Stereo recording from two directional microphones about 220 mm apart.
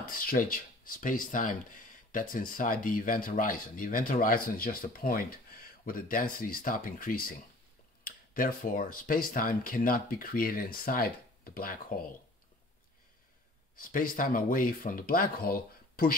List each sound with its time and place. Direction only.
0.0 s speech: 40° left (ahead or behind)
13.7 s speech: 40° left (ahead or behind)